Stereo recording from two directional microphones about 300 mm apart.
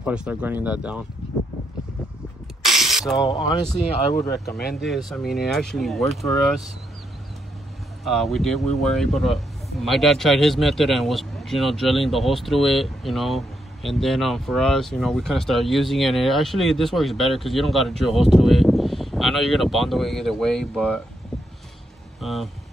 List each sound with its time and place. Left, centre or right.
0.0 s speech: centre
2.6 s spray: centre
3.2 s speech: centre
4.1 s speech: left
4.7 s speech: centre
8.0 s speech: centre
22.2 s speech: centre